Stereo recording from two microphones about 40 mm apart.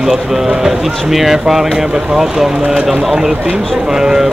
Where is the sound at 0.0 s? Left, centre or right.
Centre.